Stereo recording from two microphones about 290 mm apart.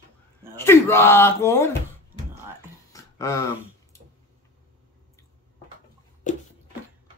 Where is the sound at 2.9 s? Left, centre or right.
Centre.